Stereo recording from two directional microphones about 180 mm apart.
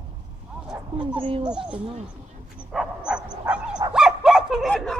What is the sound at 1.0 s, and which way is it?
Speech, 30° right (ahead or behind).